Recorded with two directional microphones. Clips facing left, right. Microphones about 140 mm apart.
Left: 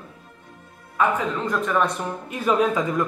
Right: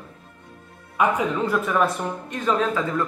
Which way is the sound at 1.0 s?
5° right (ahead or behind).